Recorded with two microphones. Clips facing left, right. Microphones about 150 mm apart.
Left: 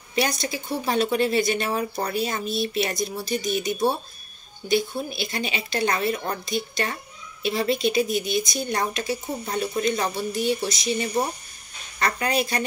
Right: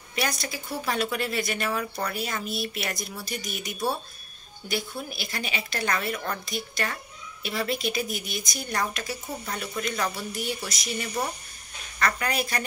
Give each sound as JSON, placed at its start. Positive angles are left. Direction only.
{"t": 0.1, "sound": "speech", "side_deg": 25}